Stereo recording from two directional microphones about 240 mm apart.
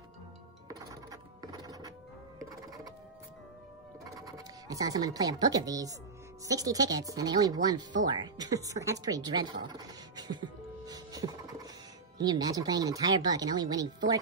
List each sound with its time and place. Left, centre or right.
0.7 s music: centre
4.0 s speech: centre
8.0 s a sound: centre
12.2 s speech: centre